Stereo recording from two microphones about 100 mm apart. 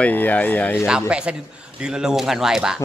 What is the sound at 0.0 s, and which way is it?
Speech, 15° left (ahead or behind).